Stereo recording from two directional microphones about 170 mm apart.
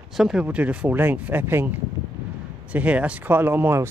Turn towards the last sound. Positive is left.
turn(degrees=-15)  # may be behind; listen again after turning